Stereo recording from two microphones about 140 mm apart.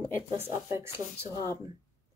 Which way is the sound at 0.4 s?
20° right (ahead or behind).